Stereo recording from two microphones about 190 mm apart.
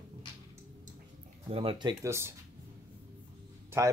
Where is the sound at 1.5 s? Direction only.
30° right (ahead or behind).